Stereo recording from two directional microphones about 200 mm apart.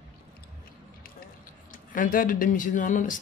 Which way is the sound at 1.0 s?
45° left (ahead or behind).